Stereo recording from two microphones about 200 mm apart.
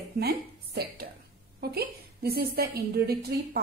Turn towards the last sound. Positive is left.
turn(degrees=-50)  # may be behind; listen again after turning